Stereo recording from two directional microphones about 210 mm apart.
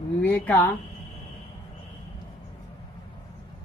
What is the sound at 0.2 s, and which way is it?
Speech, 10° left (ahead or behind).